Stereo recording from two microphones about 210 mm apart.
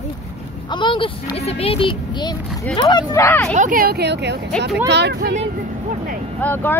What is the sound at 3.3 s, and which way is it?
Speech, 10° left (ahead or behind).